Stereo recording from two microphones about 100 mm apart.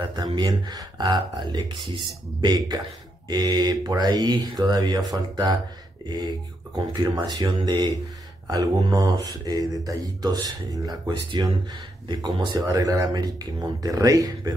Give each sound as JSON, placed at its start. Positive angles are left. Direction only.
{"t": 0.4, "sound": "speech", "side_deg": -40}
{"t": 12.5, "sound": "speech", "side_deg": -35}